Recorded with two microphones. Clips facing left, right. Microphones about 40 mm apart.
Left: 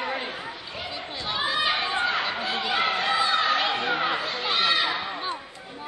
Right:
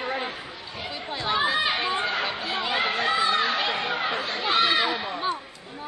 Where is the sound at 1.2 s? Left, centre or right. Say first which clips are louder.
Right 2 dB; centre.